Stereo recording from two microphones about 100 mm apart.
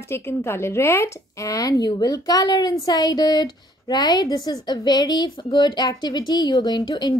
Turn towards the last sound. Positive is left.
turn(degrees=45)  # may be behind; listen again after turning